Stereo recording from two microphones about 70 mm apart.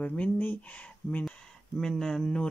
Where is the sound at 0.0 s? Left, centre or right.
Left.